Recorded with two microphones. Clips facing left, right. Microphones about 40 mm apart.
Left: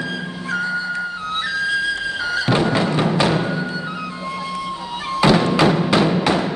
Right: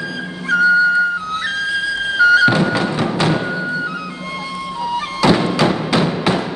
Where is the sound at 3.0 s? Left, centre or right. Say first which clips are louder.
Right 1 dB; centre.